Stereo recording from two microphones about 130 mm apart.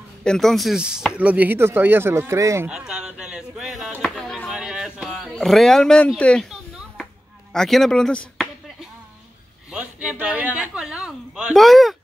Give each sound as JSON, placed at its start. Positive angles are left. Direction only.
{"t": 0.2, "sound": "speech", "side_deg": 5}
{"t": 2.7, "sound": "speech", "side_deg": -5}
{"t": 4.0, "sound": "music", "side_deg": 0}
{"t": 4.5, "sound": "a sound", "side_deg": -5}
{"t": 7.5, "sound": "speech", "side_deg": 5}
{"t": 9.7, "sound": "speech", "side_deg": -10}